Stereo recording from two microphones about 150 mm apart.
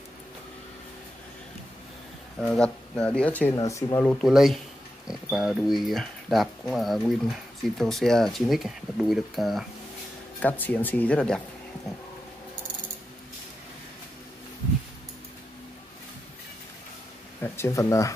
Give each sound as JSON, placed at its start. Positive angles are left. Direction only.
{"t": 2.5, "sound": "speech", "side_deg": 5}
{"t": 3.5, "sound": "speech", "side_deg": 20}
{"t": 4.2, "sound": "speech", "side_deg": 0}
{"t": 10.4, "sound": "speech", "side_deg": 10}
{"t": 17.4, "sound": "speech", "side_deg": 15}